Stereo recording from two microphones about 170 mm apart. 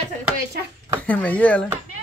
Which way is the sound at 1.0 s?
10° left (ahead or behind).